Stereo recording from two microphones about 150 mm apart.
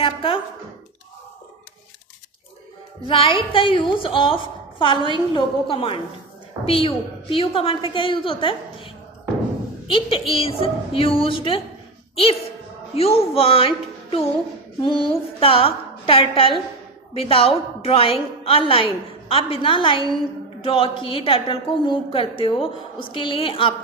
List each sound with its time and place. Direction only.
0.0 s a sound: 35° left (ahead or behind)
3.1 s a woman's voice: 35° left (ahead or behind)
12.9 s a woman's voice: 40° left (ahead or behind)